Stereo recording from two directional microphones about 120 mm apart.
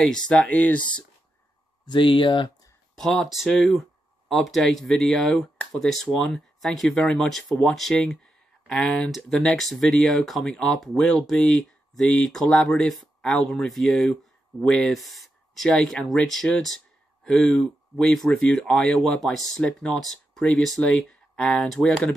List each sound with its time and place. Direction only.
0.0 s speech: 5° left (ahead or behind)
1.9 s speech: 45° left (ahead or behind)
3.0 s speech: centre (ahead or behind)